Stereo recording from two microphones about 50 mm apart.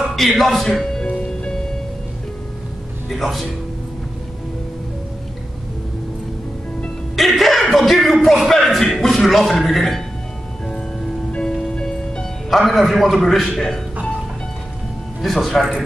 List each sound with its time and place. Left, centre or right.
0.4 s a man's voice: centre
1.0 s music: centre
3.1 s a man's voice: centre
7.2 s speech: centre
11.6 s music: centre
12.4 s a man's voice: centre
15.2 s a man's voice: centre